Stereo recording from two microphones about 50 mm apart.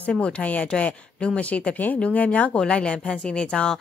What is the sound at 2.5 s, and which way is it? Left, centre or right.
Speech, left.